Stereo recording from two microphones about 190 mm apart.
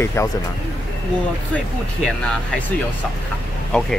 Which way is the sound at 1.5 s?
5° left (ahead or behind).